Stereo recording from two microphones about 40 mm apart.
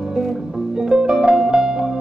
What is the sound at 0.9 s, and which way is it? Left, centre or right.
Music, centre.